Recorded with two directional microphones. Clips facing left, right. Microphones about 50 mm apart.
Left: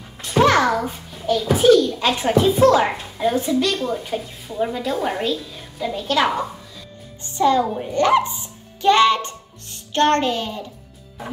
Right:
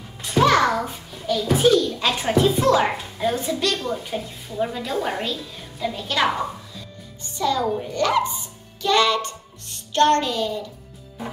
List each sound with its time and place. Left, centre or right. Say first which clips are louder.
0.7 s a child's voice: left 2 dB; centre
7.3 s a woman's voice: left 4 dB; left